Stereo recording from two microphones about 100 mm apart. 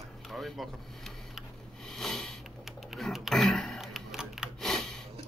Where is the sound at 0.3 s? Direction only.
Centre (ahead or behind).